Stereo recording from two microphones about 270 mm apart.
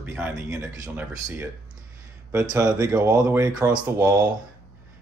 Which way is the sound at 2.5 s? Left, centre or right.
Centre.